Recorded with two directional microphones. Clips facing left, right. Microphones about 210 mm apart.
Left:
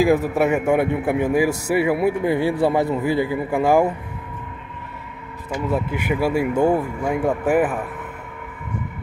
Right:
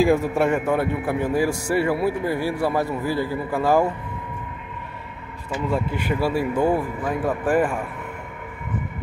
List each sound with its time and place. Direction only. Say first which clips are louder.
0.2 s a man's voice: left 2 dB; 10° left (ahead or behind)
5.7 s a man's voice: left 2 dB; 15° left (ahead or behind)